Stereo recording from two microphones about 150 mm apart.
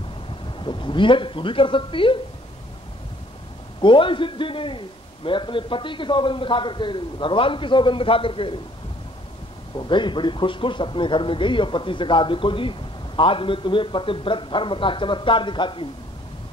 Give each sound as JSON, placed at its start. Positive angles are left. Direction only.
{"t": 0.5, "sound": "speech", "side_deg": 30}
{"t": 3.8, "sound": "speech", "side_deg": 35}
{"t": 9.8, "sound": "speech", "side_deg": 30}